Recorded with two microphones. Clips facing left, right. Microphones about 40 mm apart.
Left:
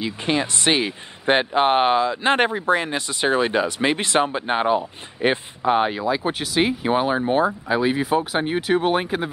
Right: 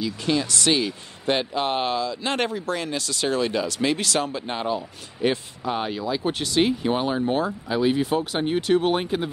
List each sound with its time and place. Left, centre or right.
0.0 s speech: left
6.0 s speech: centre